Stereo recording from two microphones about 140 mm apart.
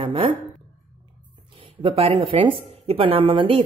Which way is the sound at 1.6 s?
40° right (ahead or behind).